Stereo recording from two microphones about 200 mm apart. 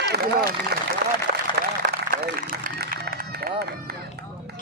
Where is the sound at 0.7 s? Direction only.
55° right (ahead or behind).